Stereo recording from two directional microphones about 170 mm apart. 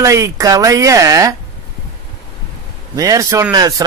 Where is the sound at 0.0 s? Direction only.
20° right (ahead or behind).